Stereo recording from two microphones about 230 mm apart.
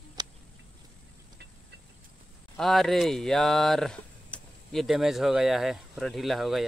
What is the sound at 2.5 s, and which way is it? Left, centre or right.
Speech, centre.